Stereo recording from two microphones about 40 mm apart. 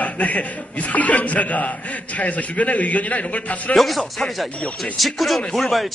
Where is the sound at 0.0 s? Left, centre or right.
Left.